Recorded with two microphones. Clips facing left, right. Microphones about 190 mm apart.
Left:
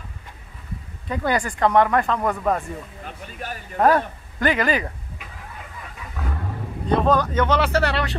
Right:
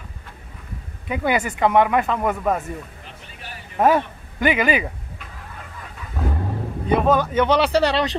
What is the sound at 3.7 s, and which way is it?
Speech, 5° right (ahead or behind).